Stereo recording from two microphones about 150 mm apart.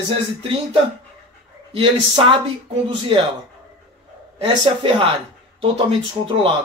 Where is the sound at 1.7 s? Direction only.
35° right (ahead or behind).